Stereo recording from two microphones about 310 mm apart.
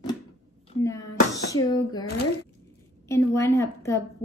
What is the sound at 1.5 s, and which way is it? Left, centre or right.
Speech, centre.